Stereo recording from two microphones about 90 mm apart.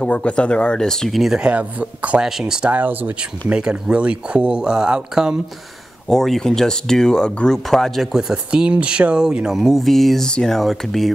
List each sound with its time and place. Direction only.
0.0 s speech: 15° left (ahead or behind); by 5.4 s 10° right (ahead or behind)
6.0 s speech: 5° left (ahead or behind)